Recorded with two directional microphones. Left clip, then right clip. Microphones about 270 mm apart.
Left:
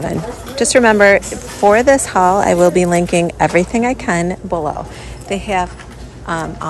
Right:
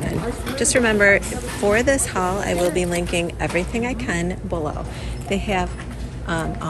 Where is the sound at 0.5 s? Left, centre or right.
Centre.